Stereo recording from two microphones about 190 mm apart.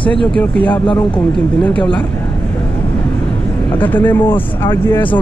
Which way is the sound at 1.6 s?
5° left (ahead or behind).